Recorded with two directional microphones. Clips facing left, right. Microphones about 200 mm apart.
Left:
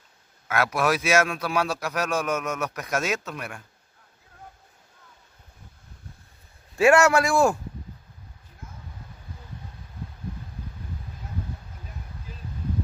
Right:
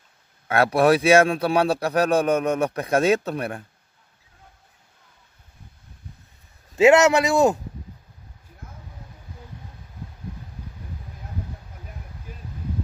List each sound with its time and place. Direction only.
0.5 s a man's voice: 30° right (ahead or behind)
6.7 s a man's voice: 20° right (ahead or behind)